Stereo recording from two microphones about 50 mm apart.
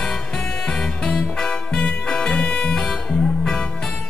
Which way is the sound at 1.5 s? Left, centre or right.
Left.